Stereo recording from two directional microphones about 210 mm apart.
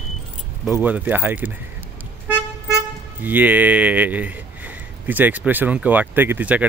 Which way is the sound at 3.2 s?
10° right (ahead or behind).